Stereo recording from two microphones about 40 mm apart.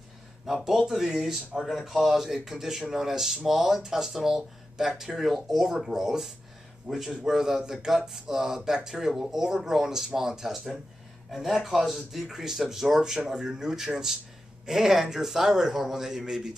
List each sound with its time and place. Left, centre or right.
0.5 s speech: centre